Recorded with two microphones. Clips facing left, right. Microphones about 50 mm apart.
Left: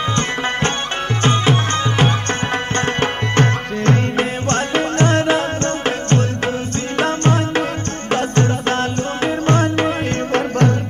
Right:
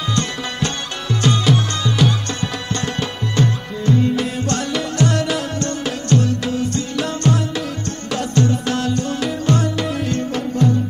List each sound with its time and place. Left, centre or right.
0.1 s music: left
4.2 s music: left